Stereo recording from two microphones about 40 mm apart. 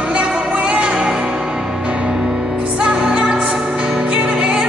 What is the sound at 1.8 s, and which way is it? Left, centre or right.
Music, right.